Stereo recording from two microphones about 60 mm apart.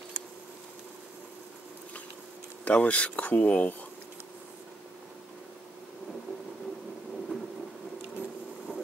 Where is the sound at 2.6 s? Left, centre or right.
Left.